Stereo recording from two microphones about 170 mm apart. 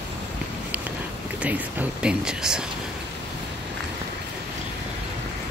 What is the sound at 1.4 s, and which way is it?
Speech, 10° right (ahead or behind).